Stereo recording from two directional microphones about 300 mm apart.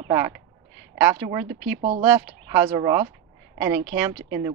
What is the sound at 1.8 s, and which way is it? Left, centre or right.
Speech, centre.